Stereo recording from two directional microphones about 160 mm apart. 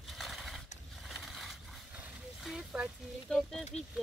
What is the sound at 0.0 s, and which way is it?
Horse, centre (ahead or behind).